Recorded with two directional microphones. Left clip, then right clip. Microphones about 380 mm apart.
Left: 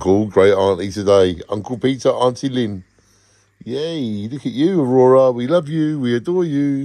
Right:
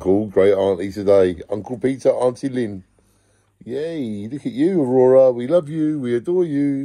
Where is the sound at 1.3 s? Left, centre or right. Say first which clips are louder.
Left 2 dB; left.